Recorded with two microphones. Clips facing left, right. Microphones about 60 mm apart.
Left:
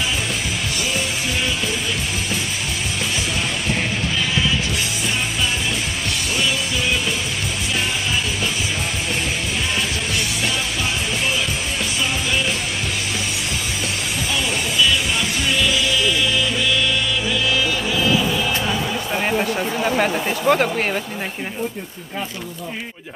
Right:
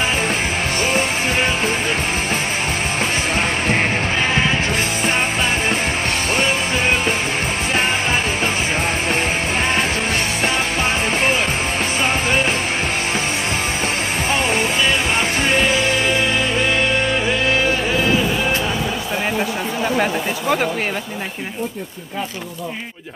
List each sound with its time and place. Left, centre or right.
6.3 s music: right
14.3 s music: right
20.0 s speech: centre